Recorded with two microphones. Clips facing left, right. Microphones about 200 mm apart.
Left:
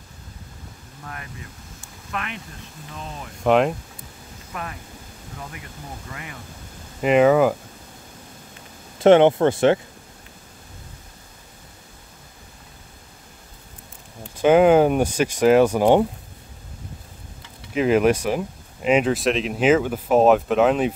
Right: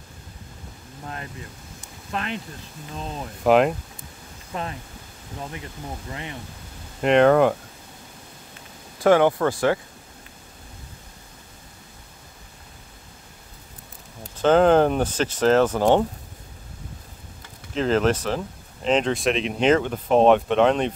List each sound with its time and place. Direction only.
1.0 s speech: 30° right (ahead or behind)
3.4 s speech: centre (ahead or behind)
4.5 s speech: 30° right (ahead or behind)
7.0 s speech: 5° left (ahead or behind)
9.0 s speech: 25° left (ahead or behind)
14.3 s speech: 10° left (ahead or behind)
17.7 s speech: 10° left (ahead or behind)